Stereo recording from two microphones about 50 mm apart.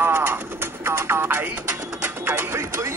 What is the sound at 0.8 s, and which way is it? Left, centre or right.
Music, right.